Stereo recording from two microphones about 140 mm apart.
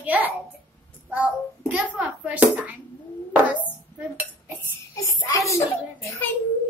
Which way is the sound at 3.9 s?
10° right (ahead or behind).